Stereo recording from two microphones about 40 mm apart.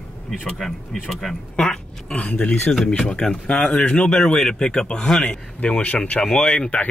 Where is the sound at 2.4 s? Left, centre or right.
Left.